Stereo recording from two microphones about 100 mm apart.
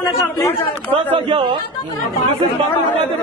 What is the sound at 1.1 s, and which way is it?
Speech, 90° right.